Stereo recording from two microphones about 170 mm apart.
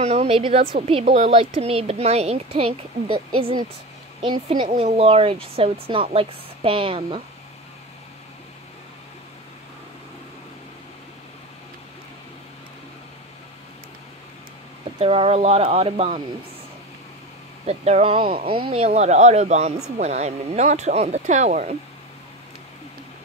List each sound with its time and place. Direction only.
0.0 s speech: 35° right (ahead or behind)
15.0 s speech: 35° right (ahead or behind)
17.6 s speech: 40° right (ahead or behind)